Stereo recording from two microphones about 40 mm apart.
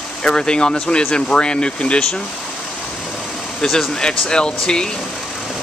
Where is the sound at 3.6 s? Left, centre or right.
Centre.